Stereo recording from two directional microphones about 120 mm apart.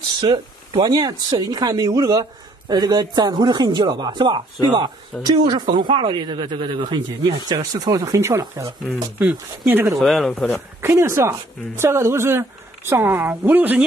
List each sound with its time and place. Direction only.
0.8 s speech: 35° right (ahead or behind)
9.2 s speech: 15° right (ahead or behind)
9.9 s speech: centre (ahead or behind)
10.8 s speech: 20° right (ahead or behind)